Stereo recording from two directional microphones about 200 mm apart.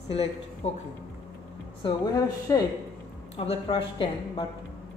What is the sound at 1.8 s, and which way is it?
Speech, 20° left (ahead or behind).